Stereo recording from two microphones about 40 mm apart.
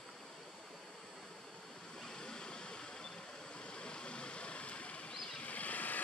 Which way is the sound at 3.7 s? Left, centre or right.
Left.